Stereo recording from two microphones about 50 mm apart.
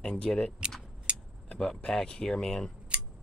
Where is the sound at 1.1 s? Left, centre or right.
Right.